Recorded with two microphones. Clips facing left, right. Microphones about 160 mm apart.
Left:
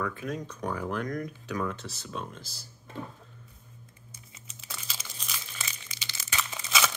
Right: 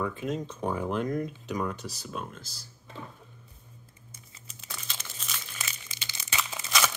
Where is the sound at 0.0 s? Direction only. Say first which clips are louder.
Right 2 dB; 20° right (ahead or behind); by 2.4 s 5° right (ahead or behind).